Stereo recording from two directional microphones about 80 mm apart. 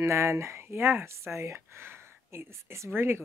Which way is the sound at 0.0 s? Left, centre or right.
Right.